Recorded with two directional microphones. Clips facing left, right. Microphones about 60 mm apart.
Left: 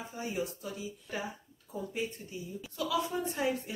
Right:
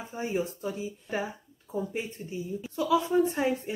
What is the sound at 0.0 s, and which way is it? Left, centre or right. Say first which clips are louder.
Speech: right 5 dB; right.